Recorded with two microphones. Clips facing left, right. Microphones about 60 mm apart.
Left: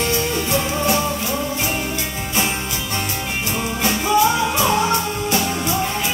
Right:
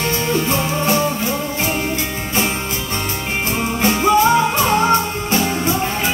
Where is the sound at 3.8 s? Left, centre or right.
Right.